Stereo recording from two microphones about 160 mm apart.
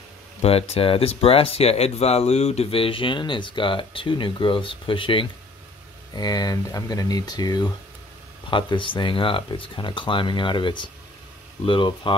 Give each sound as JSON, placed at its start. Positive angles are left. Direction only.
{"t": 0.4, "sound": "speech", "side_deg": 40}